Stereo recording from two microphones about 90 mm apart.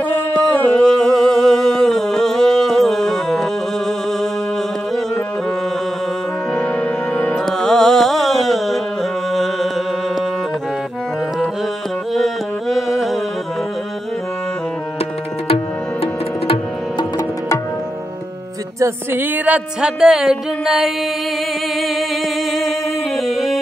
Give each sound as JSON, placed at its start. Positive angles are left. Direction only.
{"t": 0.6, "sound": "a sound", "side_deg": 10}
{"t": 6.5, "sound": "music", "side_deg": 10}
{"t": 12.1, "sound": "music", "side_deg": 0}
{"t": 15.4, "sound": "music", "side_deg": 90}
{"t": 19.1, "sound": "speech", "side_deg": -20}
{"t": 21.8, "sound": "singing", "side_deg": 0}